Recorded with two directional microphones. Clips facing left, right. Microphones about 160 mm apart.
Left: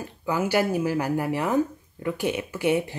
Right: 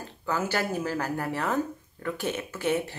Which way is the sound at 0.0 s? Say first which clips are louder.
Left 4 dB; 15° left (ahead or behind).